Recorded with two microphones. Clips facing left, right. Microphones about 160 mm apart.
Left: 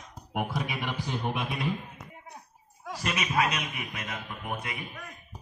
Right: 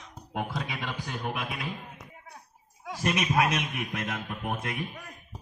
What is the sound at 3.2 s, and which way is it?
A man's voice, 70° right (ahead or behind).